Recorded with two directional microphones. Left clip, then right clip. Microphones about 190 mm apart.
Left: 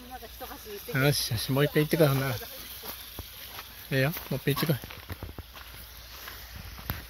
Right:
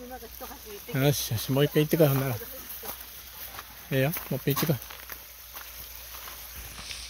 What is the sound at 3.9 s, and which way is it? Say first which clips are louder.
Speech: right 1 dB; 15° right (ahead or behind).